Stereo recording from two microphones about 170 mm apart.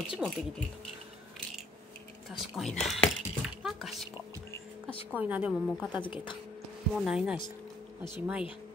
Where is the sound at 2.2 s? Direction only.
Centre (ahead or behind).